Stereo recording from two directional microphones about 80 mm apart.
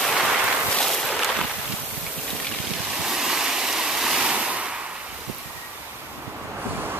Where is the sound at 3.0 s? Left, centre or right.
Centre.